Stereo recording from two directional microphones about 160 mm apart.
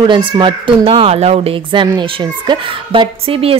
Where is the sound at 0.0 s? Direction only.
30° right (ahead or behind).